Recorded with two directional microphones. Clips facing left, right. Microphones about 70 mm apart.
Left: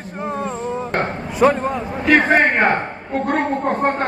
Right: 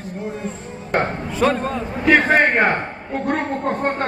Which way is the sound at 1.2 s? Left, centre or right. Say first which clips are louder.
Left 3 dB; centre.